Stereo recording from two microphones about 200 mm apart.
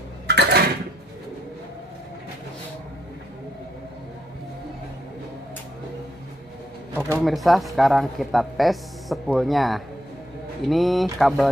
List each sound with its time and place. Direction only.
0.3 s dishes: 55° right (ahead or behind)
7.2 s speech: centre (ahead or behind)